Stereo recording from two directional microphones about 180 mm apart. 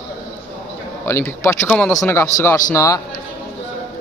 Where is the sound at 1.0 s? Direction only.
15° left (ahead or behind).